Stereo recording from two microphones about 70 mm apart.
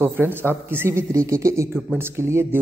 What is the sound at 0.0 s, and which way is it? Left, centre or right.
Speech, right.